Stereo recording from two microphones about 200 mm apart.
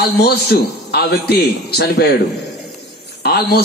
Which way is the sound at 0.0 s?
55° left (ahead or behind).